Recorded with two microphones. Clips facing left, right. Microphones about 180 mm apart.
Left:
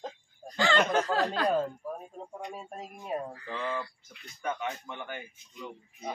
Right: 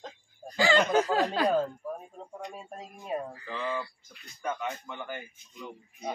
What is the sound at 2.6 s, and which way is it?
Speech, 5° left (ahead or behind).